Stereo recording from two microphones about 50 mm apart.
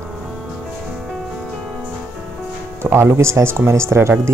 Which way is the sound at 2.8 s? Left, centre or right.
Right.